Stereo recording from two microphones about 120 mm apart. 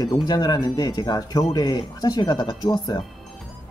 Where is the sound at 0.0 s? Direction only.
35° left (ahead or behind).